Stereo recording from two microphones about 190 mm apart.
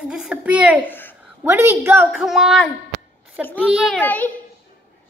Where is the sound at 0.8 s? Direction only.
10° left (ahead or behind).